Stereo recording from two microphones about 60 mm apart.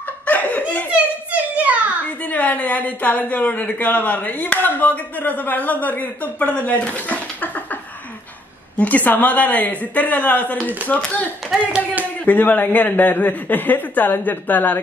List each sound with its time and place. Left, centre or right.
0.3 s laughter: left
0.9 s children playing: right
2.2 s a man's voice: left
8.7 s a man's voice: left
11.7 s a man's voice: right
12.3 s speech: left